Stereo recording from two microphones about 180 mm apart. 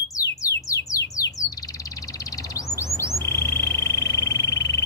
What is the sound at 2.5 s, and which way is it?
Bird, 15° left (ahead or behind).